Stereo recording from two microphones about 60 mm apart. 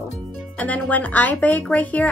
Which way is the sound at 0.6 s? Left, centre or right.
Left.